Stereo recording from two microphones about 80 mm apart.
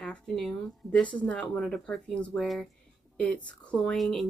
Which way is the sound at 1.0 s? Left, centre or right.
Centre.